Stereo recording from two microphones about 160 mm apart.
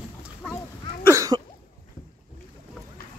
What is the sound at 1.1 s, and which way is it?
Cough, 20° right (ahead or behind).